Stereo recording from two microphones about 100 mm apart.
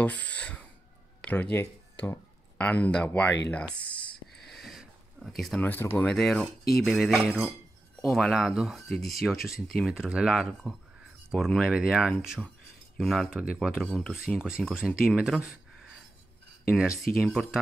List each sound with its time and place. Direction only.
0.0 s speech: 15° left (ahead or behind)
4.4 s a sound: centre (ahead or behind)
5.6 s speech: 20° left (ahead or behind)
6.0 s speech: 5° left (ahead or behind)
13.8 s speech: 5° left (ahead or behind)
14.4 s speech: 5° right (ahead or behind)
17.1 s speech: centre (ahead or behind)